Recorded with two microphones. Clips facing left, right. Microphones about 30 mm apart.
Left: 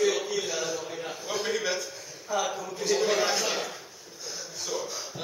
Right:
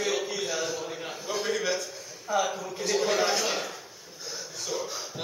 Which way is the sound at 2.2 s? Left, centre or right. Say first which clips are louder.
Right 2 dB; centre.